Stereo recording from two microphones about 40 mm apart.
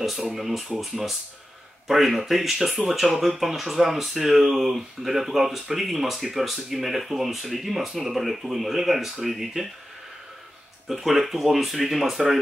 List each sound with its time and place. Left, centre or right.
0.3 s speech: centre
10.9 s speech: centre